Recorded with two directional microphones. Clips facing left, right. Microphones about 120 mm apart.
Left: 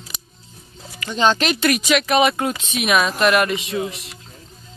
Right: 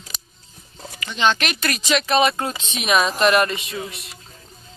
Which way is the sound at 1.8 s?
10° left (ahead or behind).